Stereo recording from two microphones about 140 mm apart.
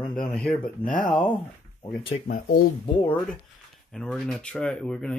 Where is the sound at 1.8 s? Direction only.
40° left (ahead or behind).